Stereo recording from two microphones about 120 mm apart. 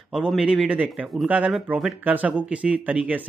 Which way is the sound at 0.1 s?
5° right (ahead or behind).